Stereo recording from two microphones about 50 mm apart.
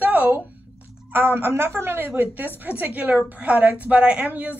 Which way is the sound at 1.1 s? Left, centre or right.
Right.